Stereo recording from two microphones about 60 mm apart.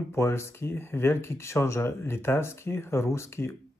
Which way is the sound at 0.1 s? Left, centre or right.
Left.